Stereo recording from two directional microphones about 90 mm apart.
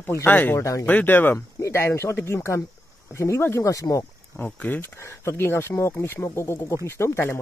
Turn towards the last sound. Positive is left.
turn(degrees=30)  # may be behind; listen again after turning